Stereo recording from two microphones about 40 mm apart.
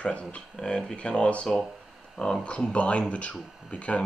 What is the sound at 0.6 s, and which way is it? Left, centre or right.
Speech, left.